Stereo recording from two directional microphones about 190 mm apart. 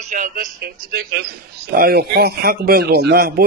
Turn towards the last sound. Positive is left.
turn(degrees=-50)  # may be behind; listen again after turning